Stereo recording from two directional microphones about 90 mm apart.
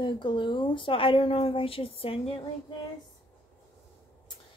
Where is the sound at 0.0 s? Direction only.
60° left (ahead or behind); by 2.4 s 90° left.